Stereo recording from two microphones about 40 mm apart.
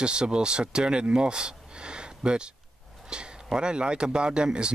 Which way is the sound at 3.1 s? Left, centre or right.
Right.